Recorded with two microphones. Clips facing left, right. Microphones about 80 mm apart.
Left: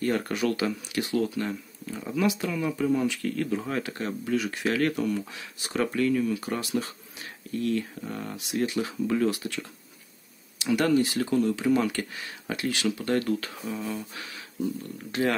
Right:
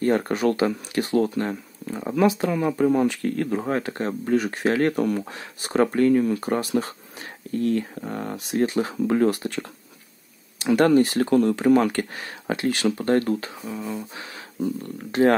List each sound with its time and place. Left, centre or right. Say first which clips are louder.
0.0 s speech: right 5 dB; right
13.7 s speech: right 5 dB; centre
15.0 s speech: right 8 dB; right